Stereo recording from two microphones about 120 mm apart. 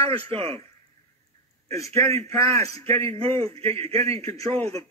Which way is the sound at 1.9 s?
60° right (ahead or behind).